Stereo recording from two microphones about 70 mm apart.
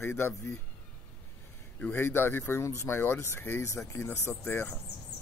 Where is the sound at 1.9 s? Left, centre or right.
Left.